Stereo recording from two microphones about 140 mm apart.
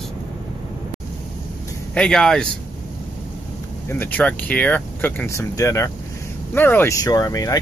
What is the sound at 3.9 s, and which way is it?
Speech, 15° left (ahead or behind).